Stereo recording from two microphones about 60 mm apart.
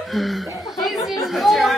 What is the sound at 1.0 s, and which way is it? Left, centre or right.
Chatter, left.